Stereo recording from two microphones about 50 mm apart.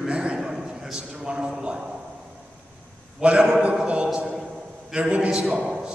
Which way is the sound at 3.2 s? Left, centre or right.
Right.